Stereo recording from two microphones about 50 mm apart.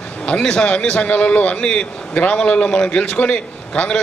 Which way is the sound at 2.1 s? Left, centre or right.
Left.